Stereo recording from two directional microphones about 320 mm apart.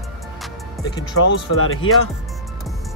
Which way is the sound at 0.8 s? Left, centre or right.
Centre.